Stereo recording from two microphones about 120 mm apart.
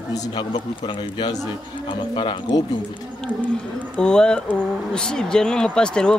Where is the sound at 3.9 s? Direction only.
5° left (ahead or behind).